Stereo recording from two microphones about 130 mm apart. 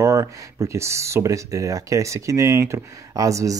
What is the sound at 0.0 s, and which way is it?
Speech, 25° right (ahead or behind).